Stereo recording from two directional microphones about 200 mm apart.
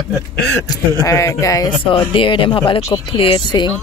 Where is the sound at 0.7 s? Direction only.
15° left (ahead or behind).